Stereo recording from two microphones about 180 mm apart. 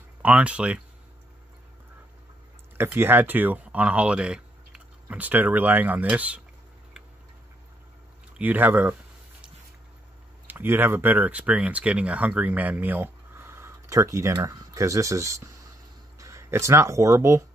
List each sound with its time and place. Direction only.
0.2 s speech: 5° right (ahead or behind)
2.8 s speech: 10° right (ahead or behind)
8.4 s speech: 10° right (ahead or behind)
10.4 s speech: 10° right (ahead or behind)